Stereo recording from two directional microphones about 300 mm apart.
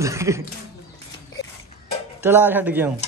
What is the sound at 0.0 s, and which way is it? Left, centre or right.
Speech, centre.